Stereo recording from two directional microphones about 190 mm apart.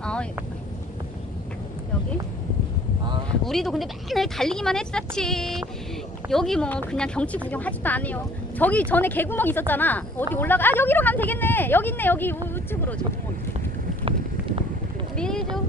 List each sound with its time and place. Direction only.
0.0 s vehicle: 5° left (ahead or behind)
3.4 s speech: centre (ahead or behind)
15.1 s boat: 5° left (ahead or behind)